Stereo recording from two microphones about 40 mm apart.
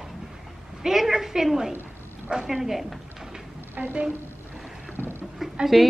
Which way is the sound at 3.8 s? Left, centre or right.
Right.